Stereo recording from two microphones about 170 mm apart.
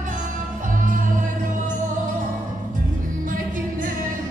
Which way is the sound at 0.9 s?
50° right (ahead or behind).